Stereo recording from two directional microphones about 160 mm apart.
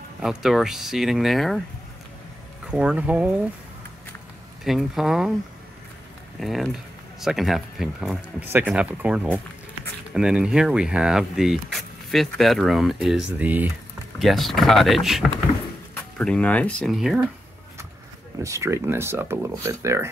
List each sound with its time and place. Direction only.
0.2 s speech: 5° right (ahead or behind)
2.6 s speech: 5° right (ahead or behind)
4.6 s speech: centre (ahead or behind)
6.4 s speech: centre (ahead or behind)
8.4 s speech: 10° right (ahead or behind)
14.2 s speech: centre (ahead or behind)
15.9 s speech: 10° left (ahead or behind)
18.4 s speech: 15° right (ahead or behind)